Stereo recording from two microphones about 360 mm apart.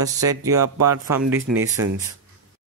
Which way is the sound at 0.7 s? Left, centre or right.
Right.